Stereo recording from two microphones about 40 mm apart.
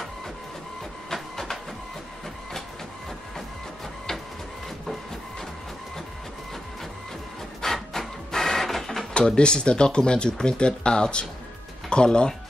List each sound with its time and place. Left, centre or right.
1.1 s a sound: centre
7.6 s printer: centre
9.1 s speech: left